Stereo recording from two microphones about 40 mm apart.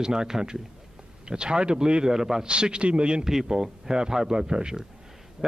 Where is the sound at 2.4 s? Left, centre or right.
Right.